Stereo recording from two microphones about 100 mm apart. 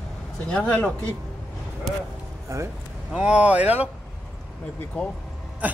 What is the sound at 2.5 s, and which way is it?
Speech, 30° right (ahead or behind).